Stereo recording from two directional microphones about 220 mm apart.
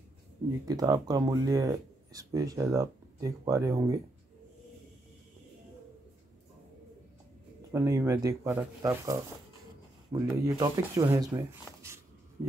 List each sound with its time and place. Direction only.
0.7 s speech: 15° right (ahead or behind)
7.7 s speech: 15° right (ahead or behind)